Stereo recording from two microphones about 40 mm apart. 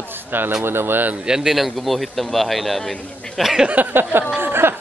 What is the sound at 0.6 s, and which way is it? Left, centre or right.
Speech, right.